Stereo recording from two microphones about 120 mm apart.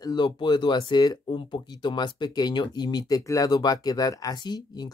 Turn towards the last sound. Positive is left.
turn(degrees=35)  # may be behind; listen again after turning